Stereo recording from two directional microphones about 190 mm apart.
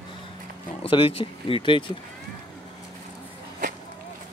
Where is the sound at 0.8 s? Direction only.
30° left (ahead or behind).